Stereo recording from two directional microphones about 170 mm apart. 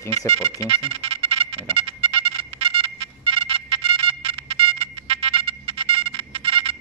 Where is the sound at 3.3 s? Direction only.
35° right (ahead or behind).